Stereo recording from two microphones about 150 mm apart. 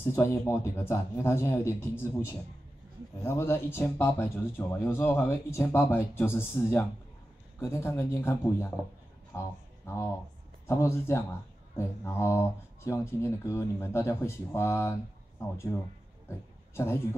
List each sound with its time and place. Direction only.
0.0 s speech: 20° left (ahead or behind)
10.7 s speech: 15° left (ahead or behind)
16.3 s a sound: 15° left (ahead or behind)